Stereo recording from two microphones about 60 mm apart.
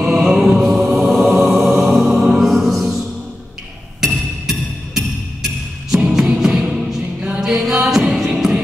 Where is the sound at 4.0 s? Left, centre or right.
Centre.